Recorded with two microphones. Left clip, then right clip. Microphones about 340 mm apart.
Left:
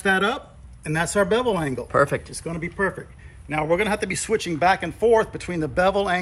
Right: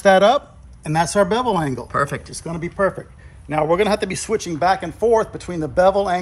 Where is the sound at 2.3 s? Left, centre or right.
Centre.